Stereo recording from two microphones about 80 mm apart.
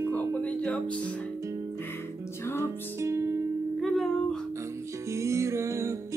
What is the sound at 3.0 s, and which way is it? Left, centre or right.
Music, right.